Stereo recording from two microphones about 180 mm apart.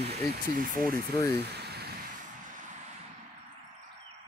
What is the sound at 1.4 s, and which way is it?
Vehicle, 65° right (ahead or behind).